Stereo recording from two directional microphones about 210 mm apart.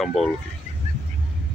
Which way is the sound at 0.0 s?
Centre (ahead or behind).